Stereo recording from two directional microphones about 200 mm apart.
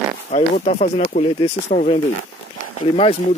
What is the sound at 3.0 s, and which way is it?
Speech, 30° left (ahead or behind).